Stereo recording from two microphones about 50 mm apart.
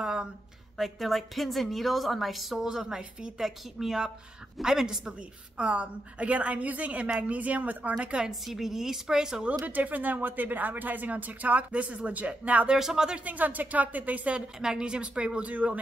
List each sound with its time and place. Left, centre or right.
0.0 s a sound: centre
0.7 s a woman's voice: centre
2.6 s a woman's voice: centre
5.6 s a woman's voice: right
8.3 s a woman's voice: centre
9.5 s speech: right
12.6 s a woman's voice: centre
13.2 s speech: right
14.6 s a woman's voice: centre